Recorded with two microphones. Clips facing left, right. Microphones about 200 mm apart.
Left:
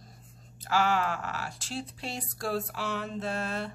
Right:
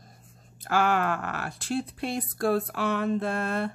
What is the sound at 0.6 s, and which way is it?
Speech, 55° right (ahead or behind).